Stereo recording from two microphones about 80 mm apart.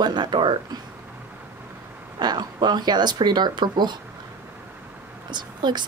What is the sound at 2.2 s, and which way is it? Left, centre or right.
Speech, right.